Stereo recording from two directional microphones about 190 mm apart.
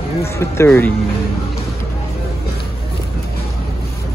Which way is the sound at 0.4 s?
10° left (ahead or behind).